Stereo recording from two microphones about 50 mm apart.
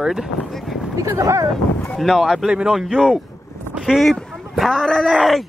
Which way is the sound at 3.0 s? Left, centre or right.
Right.